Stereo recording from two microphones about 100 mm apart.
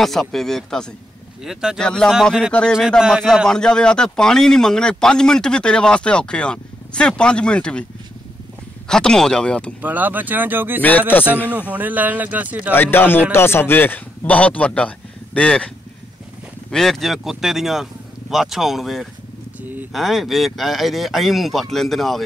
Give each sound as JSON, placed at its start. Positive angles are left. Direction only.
{"t": 0.0, "sound": "speech", "side_deg": 0}
{"t": 1.4, "sound": "speech", "side_deg": -5}
{"t": 1.8, "sound": "a man's voice", "side_deg": 10}
{"t": 2.0, "sound": "speech", "side_deg": -5}
{"t": 3.4, "sound": "a man's voice", "side_deg": 5}
{"t": 8.8, "sound": "a man's voice", "side_deg": 5}
{"t": 9.8, "sound": "speech", "side_deg": -15}
{"t": 10.8, "sound": "a man's voice", "side_deg": 15}
{"t": 11.7, "sound": "speech", "side_deg": -15}
{"t": 12.7, "sound": "speech", "side_deg": 20}
{"t": 16.7, "sound": "speech", "side_deg": 5}